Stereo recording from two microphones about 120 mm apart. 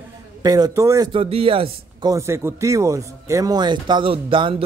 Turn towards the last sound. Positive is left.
turn(degrees=-45)  # may be behind; listen again after turning